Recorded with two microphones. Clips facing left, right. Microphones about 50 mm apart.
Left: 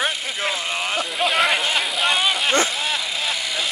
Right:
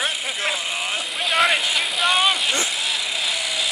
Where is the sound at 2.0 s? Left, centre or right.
Centre.